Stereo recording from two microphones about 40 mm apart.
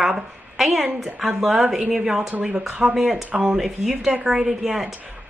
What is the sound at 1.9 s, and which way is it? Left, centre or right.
Speech, centre.